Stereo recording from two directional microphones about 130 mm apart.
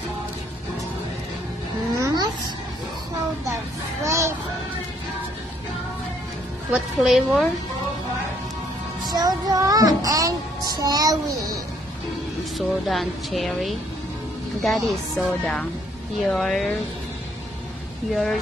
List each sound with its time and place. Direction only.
2.0 s babbling: 25° right (ahead or behind)
4.0 s child singing: 20° right (ahead or behind)
6.7 s speech: 5° right (ahead or behind)
9.0 s child singing: 30° right (ahead or behind)
12.5 s speech: centre (ahead or behind)
18.1 s speech: centre (ahead or behind)